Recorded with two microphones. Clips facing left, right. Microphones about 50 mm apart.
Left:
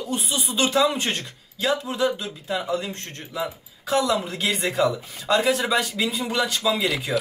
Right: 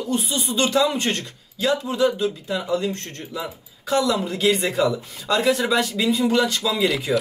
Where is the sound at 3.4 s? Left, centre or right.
Centre.